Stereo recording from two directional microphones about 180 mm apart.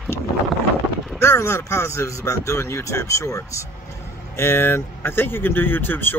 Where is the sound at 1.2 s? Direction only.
15° left (ahead or behind).